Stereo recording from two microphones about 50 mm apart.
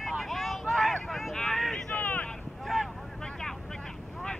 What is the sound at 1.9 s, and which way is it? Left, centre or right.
Vehicle, left.